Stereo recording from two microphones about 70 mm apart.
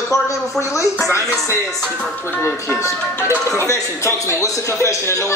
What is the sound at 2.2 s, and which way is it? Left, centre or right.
A woman's voice, left.